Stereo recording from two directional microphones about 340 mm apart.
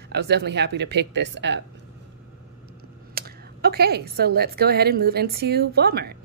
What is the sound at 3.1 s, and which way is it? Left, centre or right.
A woman's voice, right.